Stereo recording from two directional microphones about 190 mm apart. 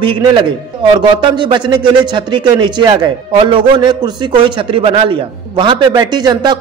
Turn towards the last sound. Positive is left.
turn(degrees=-20)  # may be behind; listen again after turning